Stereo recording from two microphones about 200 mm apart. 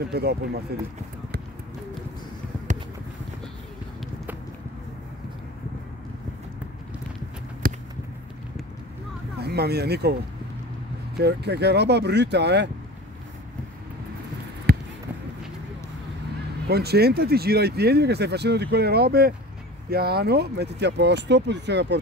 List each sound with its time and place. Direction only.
0.1 s speech: 55° right (ahead or behind)
7.6 s a sound: 45° right (ahead or behind)
9.4 s speech: 55° right (ahead or behind)
11.1 s speech: 55° right (ahead or behind)
14.7 s a sound: 50° right (ahead or behind)
16.6 s speech: 55° right (ahead or behind)